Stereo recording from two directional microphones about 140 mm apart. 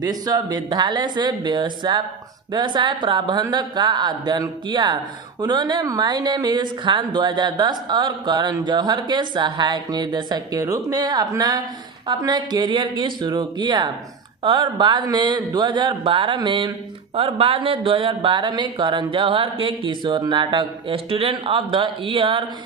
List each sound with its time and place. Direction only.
0.0 s speech: 25° right (ahead or behind)